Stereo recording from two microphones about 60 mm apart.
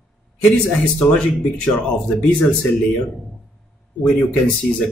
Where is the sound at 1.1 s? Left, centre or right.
Centre.